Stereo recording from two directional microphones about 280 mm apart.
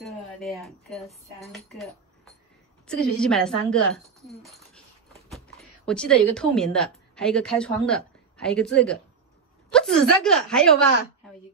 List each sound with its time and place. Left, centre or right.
0.1 s a woman's voice: centre